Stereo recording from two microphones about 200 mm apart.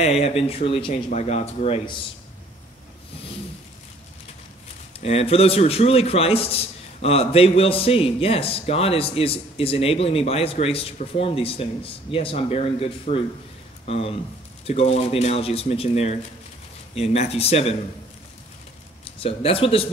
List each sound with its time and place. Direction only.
0.0 s speech: 30° left (ahead or behind)
5.0 s a man's voice: 30° left (ahead or behind)
19.0 s a man's voice: 30° left (ahead or behind)